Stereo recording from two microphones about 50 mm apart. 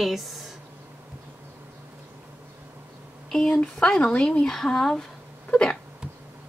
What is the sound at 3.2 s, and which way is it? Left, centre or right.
Speech, centre.